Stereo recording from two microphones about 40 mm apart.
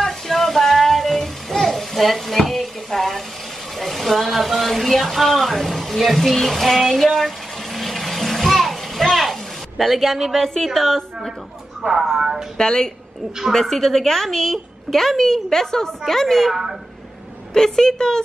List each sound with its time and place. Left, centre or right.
0.0 s child singing: centre
3.8 s speech: centre
12.2 s speech: centre
12.5 s a woman's voice: centre
13.5 s a woman's voice: centre
17.6 s a woman's voice: centre